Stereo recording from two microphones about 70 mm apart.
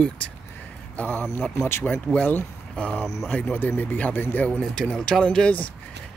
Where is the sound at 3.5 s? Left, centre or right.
Left.